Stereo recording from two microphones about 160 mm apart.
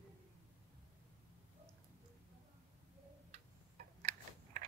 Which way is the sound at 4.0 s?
55° right (ahead or behind).